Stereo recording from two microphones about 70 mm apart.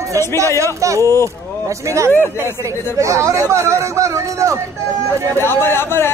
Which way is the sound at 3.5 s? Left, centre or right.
Right.